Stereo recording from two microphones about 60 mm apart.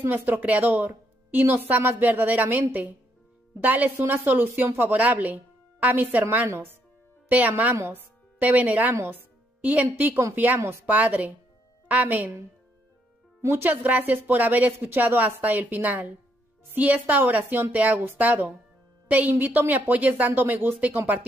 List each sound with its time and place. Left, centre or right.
0.0 s a woman's voice: right
6.4 s speech: right
7.2 s a woman's voice: right
13.4 s a woman's voice: right